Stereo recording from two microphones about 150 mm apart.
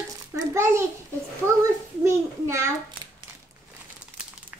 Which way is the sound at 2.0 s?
20° right (ahead or behind).